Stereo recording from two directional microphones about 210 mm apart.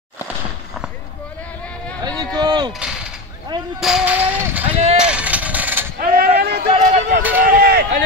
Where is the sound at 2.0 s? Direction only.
20° right (ahead or behind).